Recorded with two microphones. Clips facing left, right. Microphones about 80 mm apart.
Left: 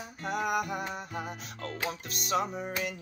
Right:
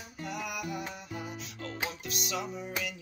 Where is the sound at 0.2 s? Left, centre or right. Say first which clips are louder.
Left 7 dB; left.